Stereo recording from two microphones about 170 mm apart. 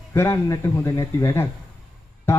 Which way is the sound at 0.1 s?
15° left (ahead or behind).